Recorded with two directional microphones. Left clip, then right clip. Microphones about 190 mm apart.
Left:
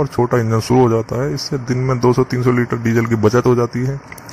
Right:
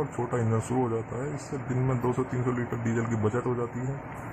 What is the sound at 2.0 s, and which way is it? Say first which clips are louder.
Speech: left 14 dB; 35° left (ahead or behind).